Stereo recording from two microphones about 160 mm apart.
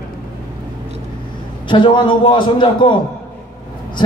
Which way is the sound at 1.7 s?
30° left (ahead or behind).